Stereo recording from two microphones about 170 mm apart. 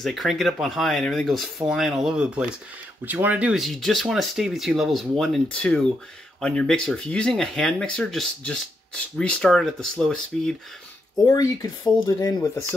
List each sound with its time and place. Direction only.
0.0 s speech: centre (ahead or behind)
11.2 s speech: 20° left (ahead or behind)